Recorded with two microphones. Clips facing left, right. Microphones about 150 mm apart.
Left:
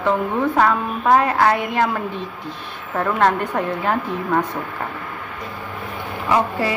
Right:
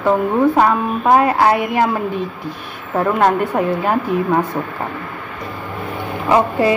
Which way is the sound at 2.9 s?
15° right (ahead or behind).